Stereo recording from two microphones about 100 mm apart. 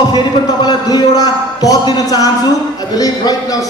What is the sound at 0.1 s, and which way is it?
Speech, 45° left (ahead or behind).